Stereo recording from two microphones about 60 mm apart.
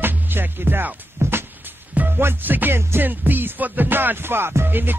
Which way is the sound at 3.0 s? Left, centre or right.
Right.